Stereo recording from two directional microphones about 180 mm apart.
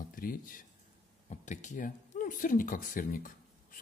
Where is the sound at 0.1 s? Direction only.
50° left (ahead or behind).